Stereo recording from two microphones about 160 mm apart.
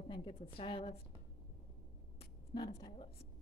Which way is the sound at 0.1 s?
35° left (ahead or behind).